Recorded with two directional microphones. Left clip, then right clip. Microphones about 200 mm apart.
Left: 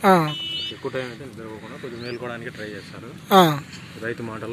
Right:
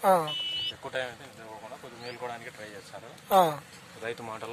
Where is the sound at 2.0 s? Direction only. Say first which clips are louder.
Left 5 dB; 55° right (ahead or behind).